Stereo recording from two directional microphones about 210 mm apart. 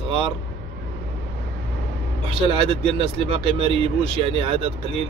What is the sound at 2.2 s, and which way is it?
Speech, 25° right (ahead or behind).